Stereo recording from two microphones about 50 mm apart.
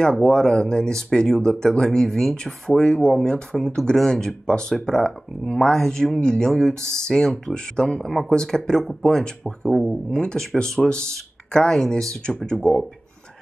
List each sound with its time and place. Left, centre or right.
0.0 s speech: centre
8.1 s speech: centre